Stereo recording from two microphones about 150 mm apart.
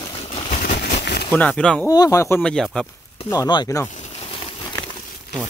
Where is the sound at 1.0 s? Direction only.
90° left.